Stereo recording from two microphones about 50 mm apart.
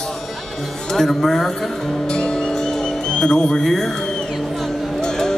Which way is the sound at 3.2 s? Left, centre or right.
Centre.